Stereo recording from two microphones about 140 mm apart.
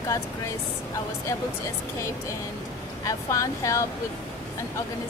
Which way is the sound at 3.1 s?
25° left (ahead or behind).